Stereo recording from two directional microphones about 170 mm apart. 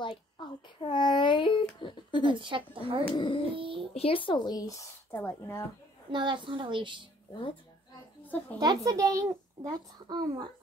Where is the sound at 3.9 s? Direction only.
35° left (ahead or behind); by 5.7 s 15° left (ahead or behind).